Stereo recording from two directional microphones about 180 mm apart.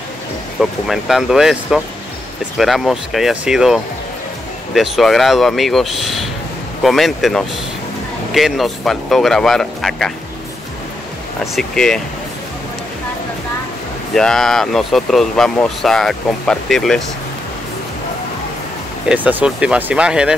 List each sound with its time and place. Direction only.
0.6 s speech: centre (ahead or behind)
11.5 s speech: centre (ahead or behind)
14.1 s speech: centre (ahead or behind)
19.0 s speech: 10° right (ahead or behind)